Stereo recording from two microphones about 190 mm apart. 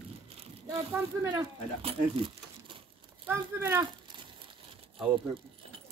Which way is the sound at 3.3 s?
10° right (ahead or behind).